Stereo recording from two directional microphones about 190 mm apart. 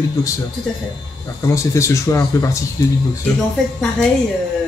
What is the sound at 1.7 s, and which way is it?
Speech, 15° left (ahead or behind).